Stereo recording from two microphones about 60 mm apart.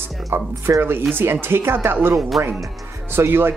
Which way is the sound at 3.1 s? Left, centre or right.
Right.